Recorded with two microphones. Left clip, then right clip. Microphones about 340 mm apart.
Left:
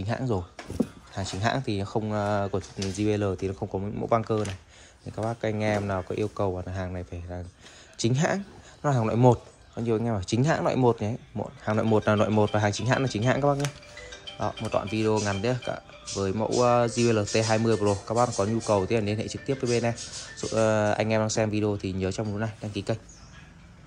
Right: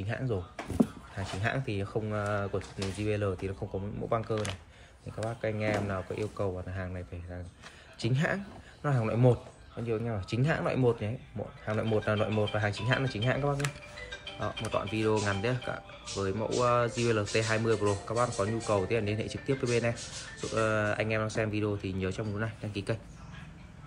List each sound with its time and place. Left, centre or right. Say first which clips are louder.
0.0 s speech: left 5 dB; centre
5.4 s speech: left 3 dB; centre